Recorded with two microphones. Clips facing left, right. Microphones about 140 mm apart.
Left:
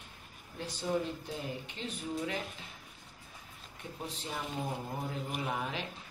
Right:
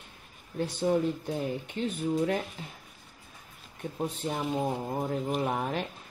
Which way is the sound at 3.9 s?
50° right (ahead or behind).